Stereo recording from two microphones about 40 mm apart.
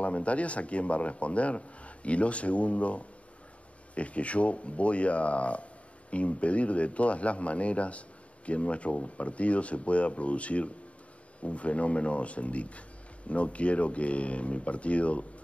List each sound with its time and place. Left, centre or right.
0.0 s speech: left